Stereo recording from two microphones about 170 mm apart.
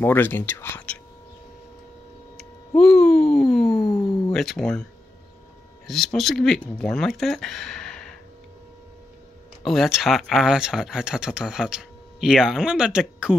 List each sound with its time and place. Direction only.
0.0 s speech: 10° left (ahead or behind)
2.3 s a sound: 5° left (ahead or behind)
4.0 s a sound: 25° left (ahead or behind)
4.3 s speech: centre (ahead or behind)
5.9 s speech: centre (ahead or behind)
9.7 s speech: centre (ahead or behind)